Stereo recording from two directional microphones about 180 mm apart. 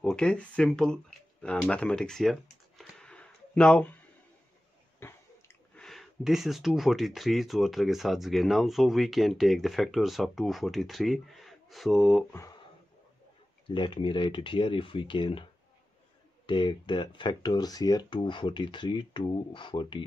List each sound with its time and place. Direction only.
0.0 s speech: 5° left (ahead or behind)
2.8 s a sound: 5° left (ahead or behind)
5.0 s a sound: 15° left (ahead or behind)
5.9 s speech: centre (ahead or behind)
13.7 s speech: 25° left (ahead or behind)
16.4 s speech: 25° left (ahead or behind)